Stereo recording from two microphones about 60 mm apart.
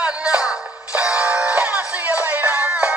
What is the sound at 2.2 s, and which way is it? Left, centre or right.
Music, right.